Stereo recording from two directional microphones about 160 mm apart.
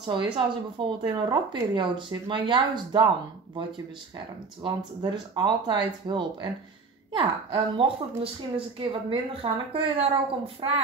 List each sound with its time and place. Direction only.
0.0 s a woman's voice: 30° right (ahead or behind)
4.6 s a woman's voice: 25° right (ahead or behind)